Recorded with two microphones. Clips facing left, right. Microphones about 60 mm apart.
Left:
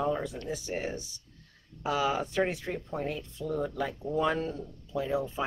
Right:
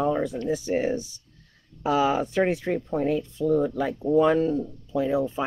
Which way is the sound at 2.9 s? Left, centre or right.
Centre.